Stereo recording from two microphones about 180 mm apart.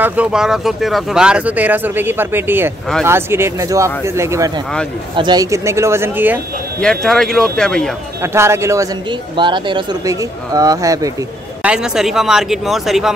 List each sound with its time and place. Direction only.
0.0 s speech: 10° right (ahead or behind)
6.8 s speech: 5° left (ahead or behind)
8.2 s speech: 15° right (ahead or behind)
9.4 s speech: 25° right (ahead or behind)
11.6 s speech: 5° right (ahead or behind)